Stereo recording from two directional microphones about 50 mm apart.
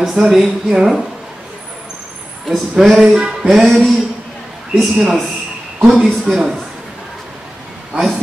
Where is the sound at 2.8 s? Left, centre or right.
Centre.